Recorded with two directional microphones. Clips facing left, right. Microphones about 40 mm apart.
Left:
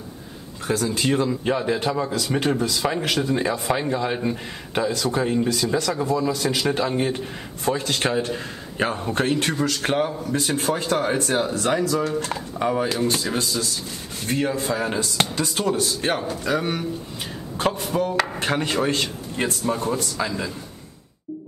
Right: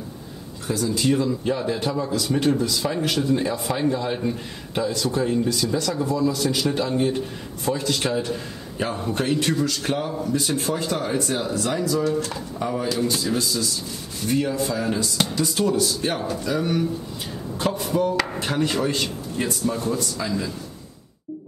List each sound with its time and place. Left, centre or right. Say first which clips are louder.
0.7 s a man's voice: even; left
17.6 s a sound: even; left
18.4 s speech: left 1 dB; left